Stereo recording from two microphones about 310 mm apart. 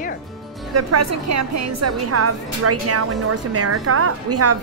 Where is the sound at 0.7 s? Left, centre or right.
Right.